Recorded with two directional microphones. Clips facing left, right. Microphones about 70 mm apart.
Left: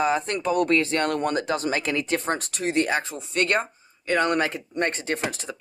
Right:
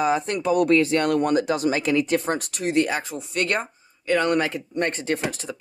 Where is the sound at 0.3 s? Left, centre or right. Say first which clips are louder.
Right 3 dB; left.